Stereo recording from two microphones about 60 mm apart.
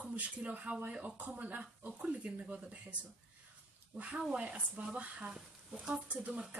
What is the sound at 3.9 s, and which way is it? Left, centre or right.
Speech, right.